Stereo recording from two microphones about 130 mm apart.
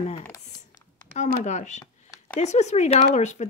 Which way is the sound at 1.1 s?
65° left (ahead or behind).